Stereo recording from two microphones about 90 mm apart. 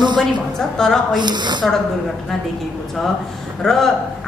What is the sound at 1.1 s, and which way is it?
Speech, 55° right (ahead or behind).